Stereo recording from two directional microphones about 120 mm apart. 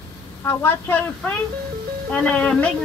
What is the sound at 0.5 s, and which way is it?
A woman's voice, 20° left (ahead or behind).